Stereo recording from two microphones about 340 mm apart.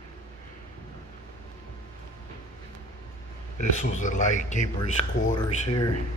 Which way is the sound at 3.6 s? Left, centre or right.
Left.